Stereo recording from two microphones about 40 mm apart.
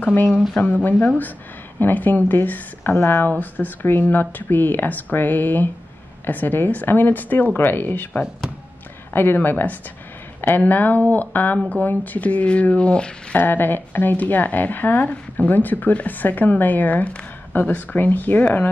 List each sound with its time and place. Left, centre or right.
0.8 s a woman's voice: left
2.8 s speech: left
3.3 s a woman's voice: left
9.1 s a woman's voice: left
13.4 s a woman's voice: left
17.6 s a woman's voice: left